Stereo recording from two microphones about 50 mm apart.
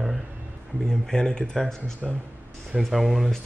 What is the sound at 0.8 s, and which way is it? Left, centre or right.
Speech, centre.